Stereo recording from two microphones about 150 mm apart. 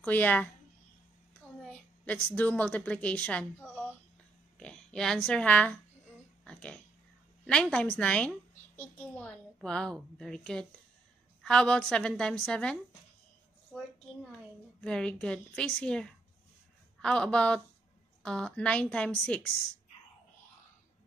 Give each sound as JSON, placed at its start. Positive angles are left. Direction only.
{"t": 0.0, "sound": "a woman's voice", "side_deg": 10}
{"t": 1.7, "sound": "a woman's voice", "side_deg": 10}
{"t": 4.6, "sound": "speech", "side_deg": 5}
{"t": 6.4, "sound": "a sound", "side_deg": 5}
{"t": 7.4, "sound": "a woman's voice", "side_deg": 5}
{"t": 14.8, "sound": "a woman's voice", "side_deg": 5}